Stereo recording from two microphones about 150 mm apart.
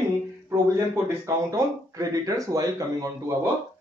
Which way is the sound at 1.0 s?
20° right (ahead or behind).